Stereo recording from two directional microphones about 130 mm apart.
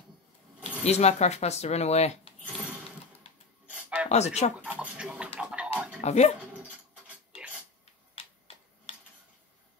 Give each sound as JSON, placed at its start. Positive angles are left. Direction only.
{"t": 0.8, "sound": "speech", "side_deg": 55}
{"t": 3.6, "sound": "a sound", "side_deg": -10}
{"t": 4.1, "sound": "speech", "side_deg": 60}
{"t": 4.6, "sound": "speech", "side_deg": -10}
{"t": 5.4, "sound": "music", "side_deg": -5}
{"t": 5.9, "sound": "speech", "side_deg": 60}
{"t": 8.1, "sound": "a sound", "side_deg": 50}